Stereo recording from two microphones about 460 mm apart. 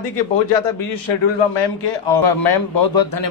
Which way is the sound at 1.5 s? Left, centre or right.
Left.